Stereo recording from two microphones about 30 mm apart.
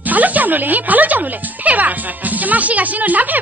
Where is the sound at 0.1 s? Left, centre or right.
Right.